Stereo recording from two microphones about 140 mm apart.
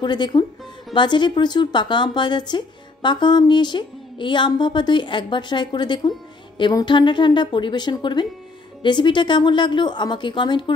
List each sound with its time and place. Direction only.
0.0 s speech: 30° left (ahead or behind)